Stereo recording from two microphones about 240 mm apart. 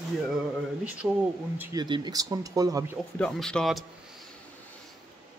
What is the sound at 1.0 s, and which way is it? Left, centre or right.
Speech, centre.